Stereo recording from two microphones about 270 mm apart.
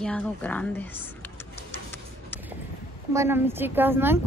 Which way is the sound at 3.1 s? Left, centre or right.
Centre.